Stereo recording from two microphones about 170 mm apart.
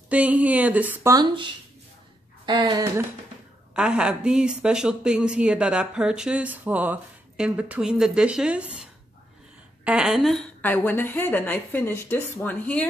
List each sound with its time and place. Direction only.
0.1 s speech: 10° right (ahead or behind)
1.1 s speech: 25° right (ahead or behind)
3.7 s speech: 5° right (ahead or behind)
9.8 s speech: 5° right (ahead or behind)
10.6 s speech: 10° left (ahead or behind)